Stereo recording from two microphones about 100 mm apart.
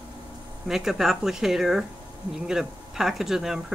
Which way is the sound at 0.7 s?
5° right (ahead or behind).